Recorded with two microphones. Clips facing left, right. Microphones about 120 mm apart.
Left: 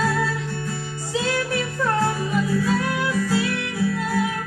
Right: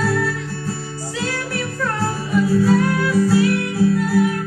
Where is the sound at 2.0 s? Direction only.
35° right (ahead or behind).